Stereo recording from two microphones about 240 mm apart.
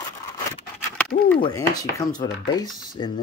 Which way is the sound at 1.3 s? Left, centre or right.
Centre.